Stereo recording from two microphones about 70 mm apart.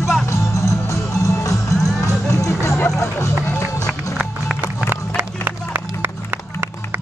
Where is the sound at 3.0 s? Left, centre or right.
Left.